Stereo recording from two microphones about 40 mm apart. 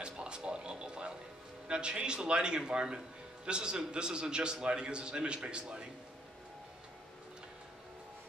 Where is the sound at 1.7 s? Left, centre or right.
Right.